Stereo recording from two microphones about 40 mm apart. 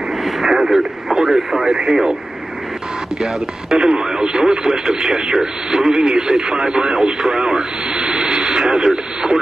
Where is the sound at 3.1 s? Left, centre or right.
Centre.